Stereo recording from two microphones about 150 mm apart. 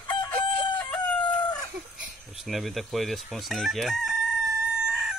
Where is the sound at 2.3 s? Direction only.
Centre (ahead or behind).